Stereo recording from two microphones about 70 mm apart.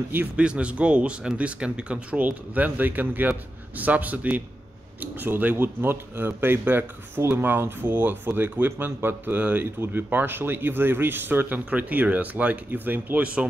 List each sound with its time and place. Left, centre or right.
0.4 s speech: centre